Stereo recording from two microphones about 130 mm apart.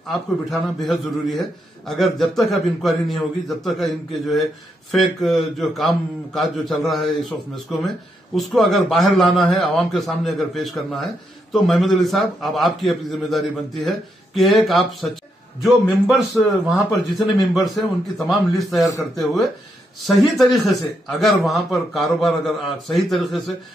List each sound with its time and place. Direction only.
0.1 s a man's voice: centre (ahead or behind)
20.1 s a man's voice: centre (ahead or behind)